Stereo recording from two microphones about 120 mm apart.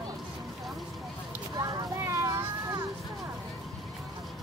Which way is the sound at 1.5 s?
30° right (ahead or behind).